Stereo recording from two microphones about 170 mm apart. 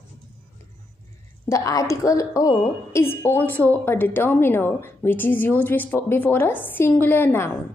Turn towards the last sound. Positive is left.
turn(degrees=10)  # may be behind; listen again after turning